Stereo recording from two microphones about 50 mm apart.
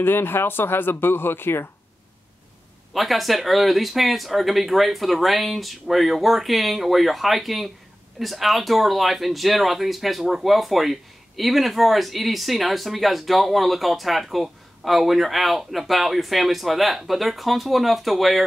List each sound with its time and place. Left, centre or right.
0.0 s speech: left
2.9 s speech: centre